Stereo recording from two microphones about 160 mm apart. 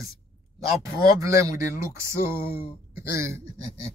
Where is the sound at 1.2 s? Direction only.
20° right (ahead or behind).